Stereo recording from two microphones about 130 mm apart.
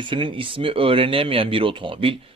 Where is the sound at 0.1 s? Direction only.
40° right (ahead or behind).